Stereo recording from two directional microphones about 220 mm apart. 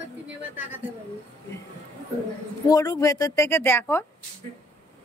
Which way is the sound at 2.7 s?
15° left (ahead or behind).